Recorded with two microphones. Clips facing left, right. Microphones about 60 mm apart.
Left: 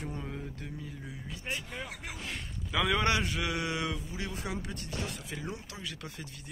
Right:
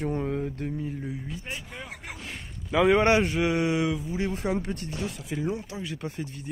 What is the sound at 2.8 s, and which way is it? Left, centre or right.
A man's voice, right.